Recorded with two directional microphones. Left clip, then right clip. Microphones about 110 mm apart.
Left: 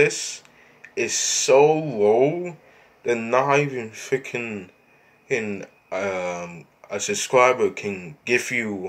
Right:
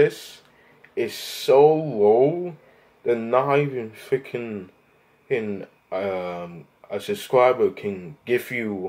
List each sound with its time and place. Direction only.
0.9 s speech: 20° right (ahead or behind)